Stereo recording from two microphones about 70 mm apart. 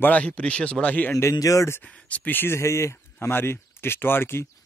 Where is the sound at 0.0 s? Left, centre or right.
Left.